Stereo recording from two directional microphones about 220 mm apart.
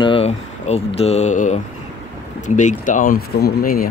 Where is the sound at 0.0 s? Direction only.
25° left (ahead or behind).